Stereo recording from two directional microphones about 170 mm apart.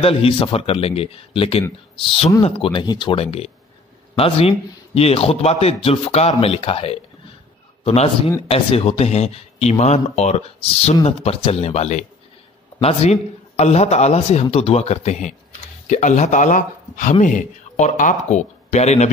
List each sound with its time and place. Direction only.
0.0 s a man's voice: 35° left (ahead or behind)